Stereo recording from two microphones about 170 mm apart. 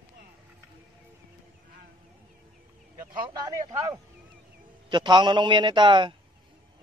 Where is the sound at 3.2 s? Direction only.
25° right (ahead or behind).